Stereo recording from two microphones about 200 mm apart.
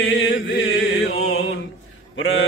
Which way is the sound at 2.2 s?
70° left (ahead or behind).